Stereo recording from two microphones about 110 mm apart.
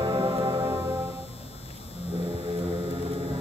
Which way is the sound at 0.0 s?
45° right (ahead or behind).